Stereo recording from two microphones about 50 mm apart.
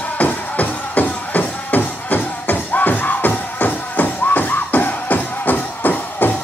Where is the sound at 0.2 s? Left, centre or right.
Left.